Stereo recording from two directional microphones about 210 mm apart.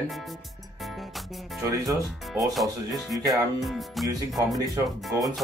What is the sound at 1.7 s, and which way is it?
Speech, 15° right (ahead or behind).